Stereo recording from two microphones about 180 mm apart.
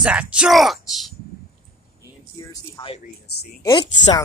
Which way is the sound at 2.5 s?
25° left (ahead or behind).